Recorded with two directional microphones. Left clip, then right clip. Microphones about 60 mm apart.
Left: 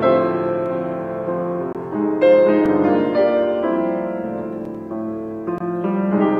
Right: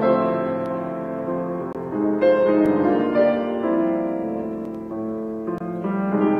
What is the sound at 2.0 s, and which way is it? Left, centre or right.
Music, centre.